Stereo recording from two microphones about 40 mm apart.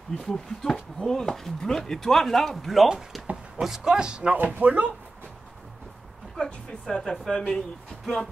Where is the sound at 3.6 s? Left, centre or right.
Centre.